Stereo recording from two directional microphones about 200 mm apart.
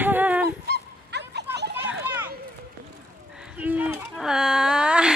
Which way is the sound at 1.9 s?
10° right (ahead or behind).